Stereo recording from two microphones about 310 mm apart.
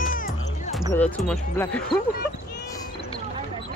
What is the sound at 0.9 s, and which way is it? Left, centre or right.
Speech, centre.